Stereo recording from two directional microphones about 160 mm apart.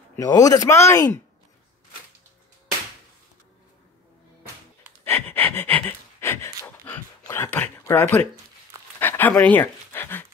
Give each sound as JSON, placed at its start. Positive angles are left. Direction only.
{"t": 0.2, "sound": "a man's voice", "side_deg": 25}
{"t": 5.0, "sound": "pant", "side_deg": 15}
{"t": 7.2, "sound": "speech", "side_deg": 15}
{"t": 9.0, "sound": "a sound", "side_deg": 10}